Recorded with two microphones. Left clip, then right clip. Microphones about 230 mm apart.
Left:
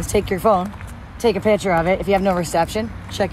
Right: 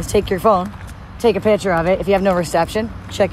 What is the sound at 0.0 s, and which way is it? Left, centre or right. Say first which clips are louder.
Speech: right 2 dB; right.